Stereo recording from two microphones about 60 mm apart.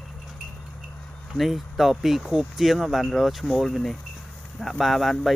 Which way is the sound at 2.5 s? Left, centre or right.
Centre.